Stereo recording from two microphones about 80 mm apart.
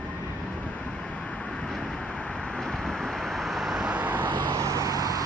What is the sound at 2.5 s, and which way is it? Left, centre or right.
Vehicle, centre.